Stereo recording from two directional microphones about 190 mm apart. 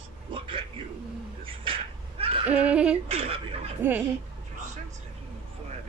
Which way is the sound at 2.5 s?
5° right (ahead or behind).